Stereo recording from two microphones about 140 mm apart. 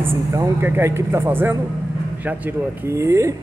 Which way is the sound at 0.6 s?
15° right (ahead or behind).